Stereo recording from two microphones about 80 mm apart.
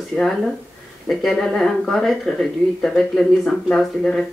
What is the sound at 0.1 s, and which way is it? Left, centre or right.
Speech, centre.